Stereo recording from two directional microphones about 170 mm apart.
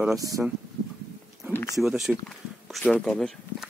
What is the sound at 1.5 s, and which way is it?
Speech, 15° left (ahead or behind).